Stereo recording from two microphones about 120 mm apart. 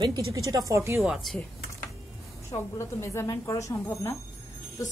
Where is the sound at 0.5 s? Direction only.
25° right (ahead or behind).